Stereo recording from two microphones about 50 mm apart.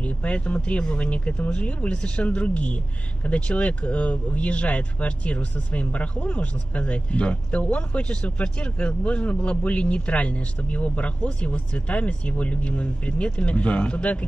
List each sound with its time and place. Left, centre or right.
0.0 s speech: left